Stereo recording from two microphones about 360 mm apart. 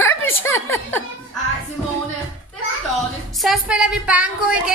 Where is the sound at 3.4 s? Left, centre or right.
Centre.